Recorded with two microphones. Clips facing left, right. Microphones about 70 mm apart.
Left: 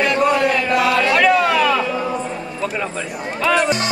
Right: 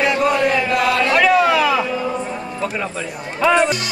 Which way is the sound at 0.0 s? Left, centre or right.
Centre.